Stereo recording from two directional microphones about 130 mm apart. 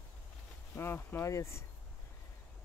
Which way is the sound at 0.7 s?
20° left (ahead or behind).